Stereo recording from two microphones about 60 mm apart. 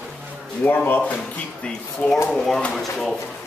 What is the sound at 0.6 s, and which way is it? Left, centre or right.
Speech, left.